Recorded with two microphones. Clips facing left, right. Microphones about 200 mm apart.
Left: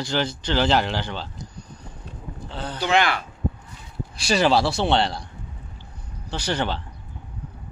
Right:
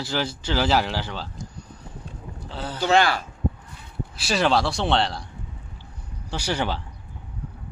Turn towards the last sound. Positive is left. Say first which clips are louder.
# left 1 dB
turn(degrees=-10)  # may be behind; listen again after turning